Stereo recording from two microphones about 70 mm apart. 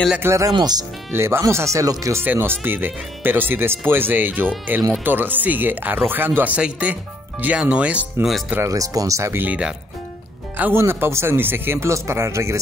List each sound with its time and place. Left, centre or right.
0.2 s speech: right
0.5 s speech: right
1.1 s speech: right
1.5 s speech: right
2.2 s speech: right
8.6 s speech: right
9.4 s speech: right
10.7 s speech: right
11.9 s speech: right